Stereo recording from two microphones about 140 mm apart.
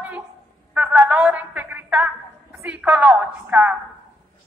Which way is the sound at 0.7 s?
10° right (ahead or behind).